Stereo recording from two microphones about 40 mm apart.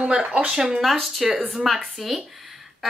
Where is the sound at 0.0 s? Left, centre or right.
Right.